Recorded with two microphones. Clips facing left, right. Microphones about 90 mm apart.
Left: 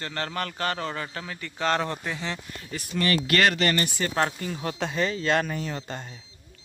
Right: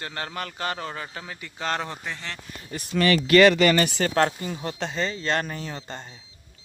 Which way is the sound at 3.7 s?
90° right.